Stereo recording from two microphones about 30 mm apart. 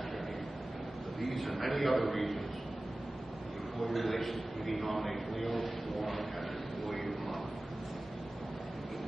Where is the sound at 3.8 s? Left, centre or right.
Centre.